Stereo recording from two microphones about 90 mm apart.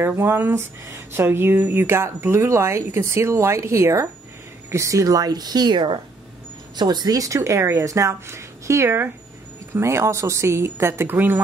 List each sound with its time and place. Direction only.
0.0 s speech: 25° right (ahead or behind)